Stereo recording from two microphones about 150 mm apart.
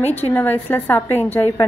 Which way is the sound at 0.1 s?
10° left (ahead or behind).